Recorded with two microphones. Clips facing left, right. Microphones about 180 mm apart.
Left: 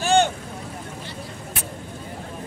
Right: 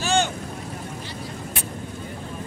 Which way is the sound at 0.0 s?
55° left (ahead or behind).